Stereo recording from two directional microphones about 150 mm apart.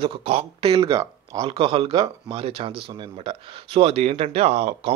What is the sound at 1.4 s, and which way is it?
A man's voice, 35° right (ahead or behind).